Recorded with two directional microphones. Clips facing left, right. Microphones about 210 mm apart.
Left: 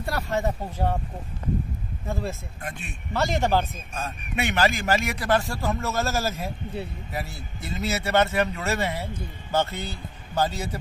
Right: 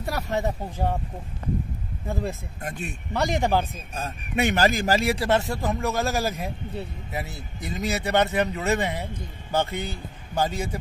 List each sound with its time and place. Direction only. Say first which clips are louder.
0.1 s a man's voice: even; 15° right (ahead or behind)
2.6 s speech: right 4 dB; 40° right (ahead or behind)
3.1 s a man's voice: even; 15° right (ahead or behind)
3.7 s a man's voice: even; 35° right (ahead or behind); by 10.8 s 10° right (ahead or behind)